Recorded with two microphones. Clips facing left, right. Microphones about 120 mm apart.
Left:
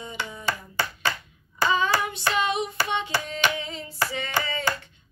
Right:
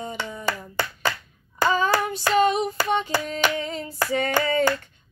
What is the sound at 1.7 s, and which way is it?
Hands, 40° right (ahead or behind).